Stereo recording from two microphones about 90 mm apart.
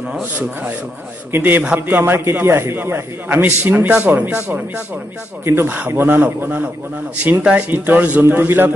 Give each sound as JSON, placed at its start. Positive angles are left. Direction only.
{"t": 1.3, "sound": "a man's voice", "side_deg": -20}